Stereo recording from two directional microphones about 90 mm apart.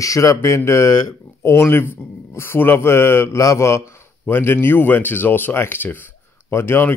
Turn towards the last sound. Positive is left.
turn(degrees=25)  # may be behind; listen again after turning